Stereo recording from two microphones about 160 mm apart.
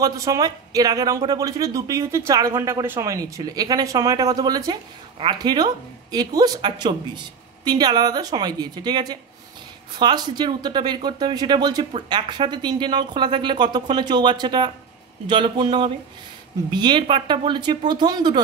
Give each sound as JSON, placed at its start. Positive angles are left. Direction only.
{"t": 0.0, "sound": "speech", "side_deg": -20}